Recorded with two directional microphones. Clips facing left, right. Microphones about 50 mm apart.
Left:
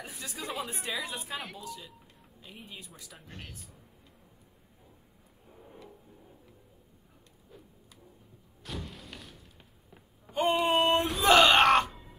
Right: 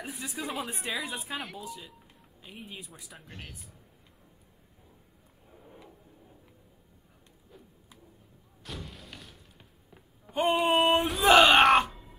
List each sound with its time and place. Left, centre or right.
0.0 s a woman's voice: centre
1.6 s a woman's voice: centre
5.5 s drawer open or close: centre
7.5 s a sound: centre
10.3 s speech: centre
10.8 s a sound: centre
11.2 s groan: centre